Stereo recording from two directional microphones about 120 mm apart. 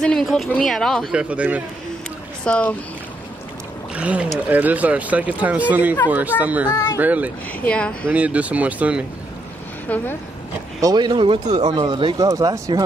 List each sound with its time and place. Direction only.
0.0 s speech: 5° left (ahead or behind)
1.1 s speech: 10° right (ahead or behind)
2.4 s speech: 10° left (ahead or behind)
3.9 s speech: 10° right (ahead or behind)
6.7 s speech: 25° left (ahead or behind)
7.0 s speech: 15° right (ahead or behind)
7.6 s speech: 10° left (ahead or behind)
8.1 s speech: 10° right (ahead or behind)
10.8 s speech: 35° right (ahead or behind)
12.3 s speech: 30° right (ahead or behind)